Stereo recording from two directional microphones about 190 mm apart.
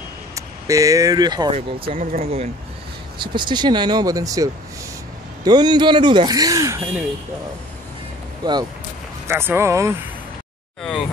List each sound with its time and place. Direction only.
0.7 s speech: 20° right (ahead or behind)
1.9 s speech: 35° right (ahead or behind)
3.2 s speech: 25° right (ahead or behind)
9.3 s speech: 10° right (ahead or behind)